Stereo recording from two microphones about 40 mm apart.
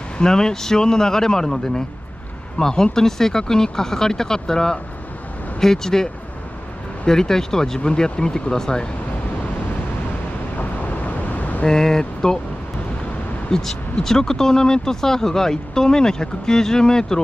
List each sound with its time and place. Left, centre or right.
0.2 s speech: centre
7.1 s speech: centre
10.6 s vehicle: left
11.6 s speech: centre
13.5 s speech: centre